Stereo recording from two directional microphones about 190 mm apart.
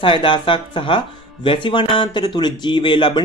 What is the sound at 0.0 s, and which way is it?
Speech, 25° left (ahead or behind).